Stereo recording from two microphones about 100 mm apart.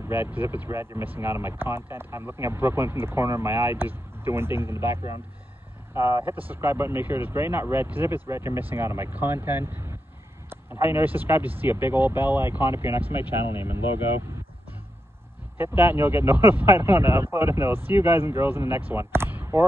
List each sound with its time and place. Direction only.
0.1 s speech: 20° right (ahead or behind)
15.5 s speech: 25° right (ahead or behind)